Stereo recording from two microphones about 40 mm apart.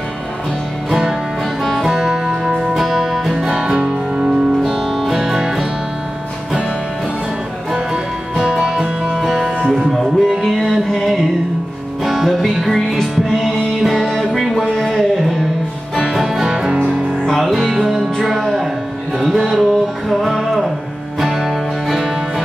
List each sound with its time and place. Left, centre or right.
1.6 s music: centre
3.3 s music: centre
3.8 s music: centre
7.7 s music: centre
12.0 s music: centre
16.1 s music: centre
17.2 s music: centre